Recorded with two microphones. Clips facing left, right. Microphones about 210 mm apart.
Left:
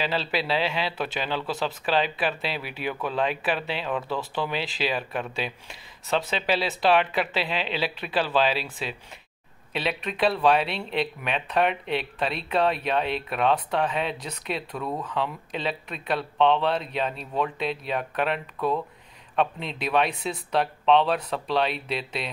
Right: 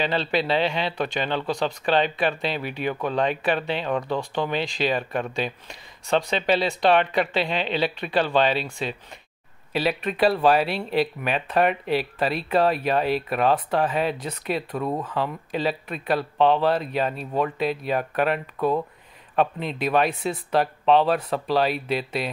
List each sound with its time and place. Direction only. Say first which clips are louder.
0.0 s speech: right 3 dB; 5° left (ahead or behind)
14.8 s speech: right 4 dB; 25° right (ahead or behind)
15.0 s speech: right 2 dB; centre (ahead or behind)